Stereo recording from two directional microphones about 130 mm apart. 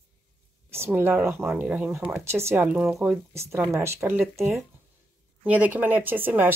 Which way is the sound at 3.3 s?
20° right (ahead or behind).